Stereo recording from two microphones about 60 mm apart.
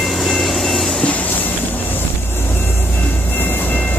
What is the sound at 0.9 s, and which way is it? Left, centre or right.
Train, left.